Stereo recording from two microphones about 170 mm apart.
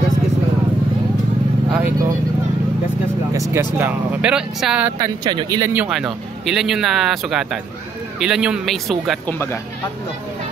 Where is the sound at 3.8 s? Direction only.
10° right (ahead or behind).